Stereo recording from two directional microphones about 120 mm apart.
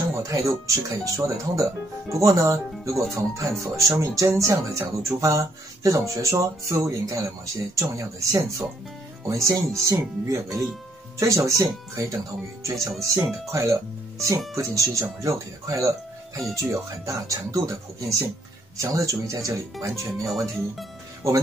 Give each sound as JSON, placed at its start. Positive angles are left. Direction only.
{"t": 0.1, "sound": "speech", "side_deg": -30}
{"t": 20.2, "sound": "speech", "side_deg": 0}